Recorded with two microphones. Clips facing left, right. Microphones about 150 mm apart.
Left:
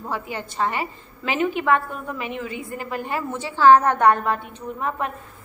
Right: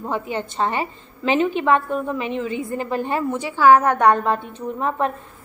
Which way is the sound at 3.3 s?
15° right (ahead or behind).